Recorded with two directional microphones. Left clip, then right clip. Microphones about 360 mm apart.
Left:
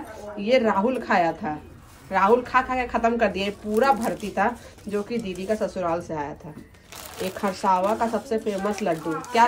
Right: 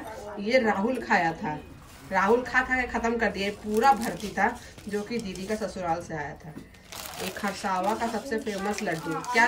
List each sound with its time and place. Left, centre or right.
0.4 s a woman's voice: centre